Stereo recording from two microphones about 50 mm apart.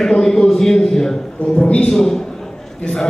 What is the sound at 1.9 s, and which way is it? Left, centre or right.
Speech, centre.